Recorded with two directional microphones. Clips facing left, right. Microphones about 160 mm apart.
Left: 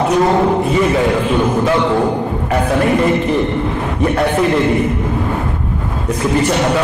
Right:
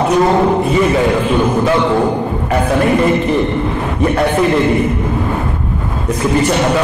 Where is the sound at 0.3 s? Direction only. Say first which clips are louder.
Right 1 dB; 35° right (ahead or behind).